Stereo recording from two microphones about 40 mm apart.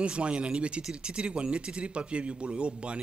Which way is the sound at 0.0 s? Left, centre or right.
Right.